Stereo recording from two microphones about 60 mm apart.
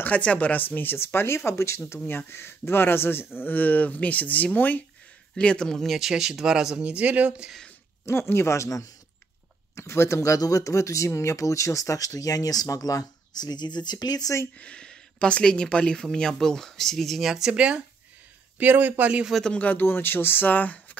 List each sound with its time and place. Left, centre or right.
0.0 s speech: left
2.0 s speech: left
5.3 s speech: centre
5.9 s speech: centre
8.0 s speech: left
13.9 s speech: left
14.6 s speech: centre
18.6 s speech: right
19.4 s speech: left